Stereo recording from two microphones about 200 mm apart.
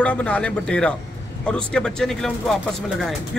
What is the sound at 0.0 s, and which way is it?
A man's voice, 5° left (ahead or behind).